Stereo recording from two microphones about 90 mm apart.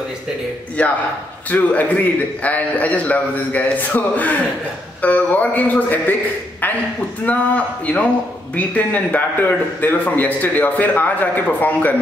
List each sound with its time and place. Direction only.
0.8 s a man's voice: 15° left (ahead or behind)
7.2 s a man's voice: 15° left (ahead or behind)